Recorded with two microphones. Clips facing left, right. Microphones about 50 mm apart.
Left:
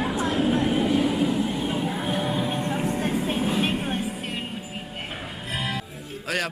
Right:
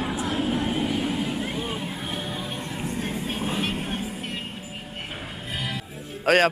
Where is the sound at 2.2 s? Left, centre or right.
Left.